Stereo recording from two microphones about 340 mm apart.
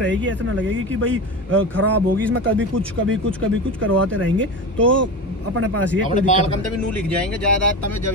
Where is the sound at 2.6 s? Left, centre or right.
Right.